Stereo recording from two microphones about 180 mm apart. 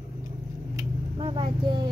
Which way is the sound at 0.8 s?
30° right (ahead or behind).